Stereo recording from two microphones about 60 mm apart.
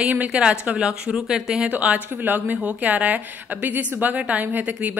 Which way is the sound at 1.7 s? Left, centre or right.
Right.